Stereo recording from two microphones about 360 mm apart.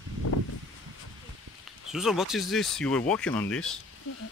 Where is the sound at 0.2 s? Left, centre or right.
Left.